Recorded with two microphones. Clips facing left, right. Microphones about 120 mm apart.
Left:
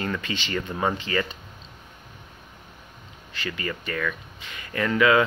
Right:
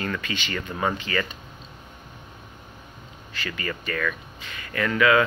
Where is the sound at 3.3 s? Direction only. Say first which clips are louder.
Left 1 dB; 25° left (ahead or behind).